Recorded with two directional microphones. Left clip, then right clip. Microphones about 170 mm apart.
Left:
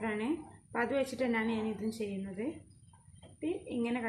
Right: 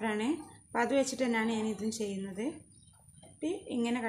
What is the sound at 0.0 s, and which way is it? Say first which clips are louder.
A woman's voice: right 2 dB; 25° right (ahead or behind).